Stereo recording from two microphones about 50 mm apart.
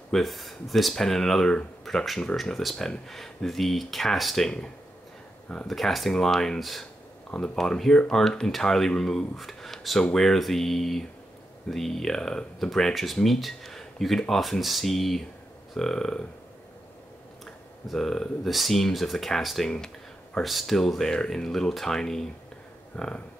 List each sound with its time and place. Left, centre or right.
0.1 s speech: centre
5.7 s speech: centre
7.2 s speech: centre
17.8 s speech: centre